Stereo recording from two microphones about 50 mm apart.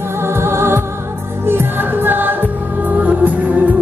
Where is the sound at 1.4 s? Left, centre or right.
Right.